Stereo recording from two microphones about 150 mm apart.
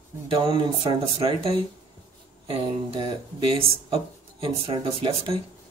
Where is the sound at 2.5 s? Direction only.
35° right (ahead or behind).